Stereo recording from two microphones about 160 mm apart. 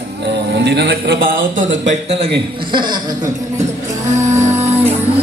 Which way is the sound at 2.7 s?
30° right (ahead or behind).